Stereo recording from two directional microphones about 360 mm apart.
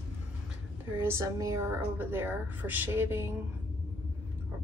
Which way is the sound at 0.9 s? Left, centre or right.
Centre.